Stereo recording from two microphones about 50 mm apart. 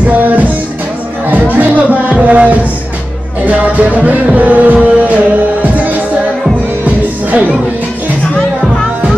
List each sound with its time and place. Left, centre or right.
0.0 s music: right
7.2 s music: right